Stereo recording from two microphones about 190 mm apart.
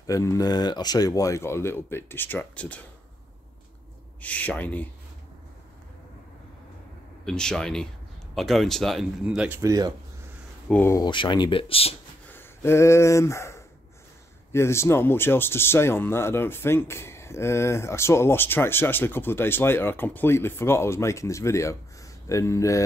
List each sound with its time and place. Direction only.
0.0 s speech: 15° left (ahead or behind)
4.2 s speech: 10° left (ahead or behind)
7.2 s speech: 5° left (ahead or behind); by 9.9 s 20° right (ahead or behind)
10.7 s speech: 15° left (ahead or behind); by 11.9 s 30° left (ahead or behind)
12.3 s speech: 10° left (ahead or behind)